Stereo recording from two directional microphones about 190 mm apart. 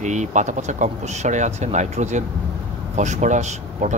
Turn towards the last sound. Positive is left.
turn(degrees=-40)  # may be behind; listen again after turning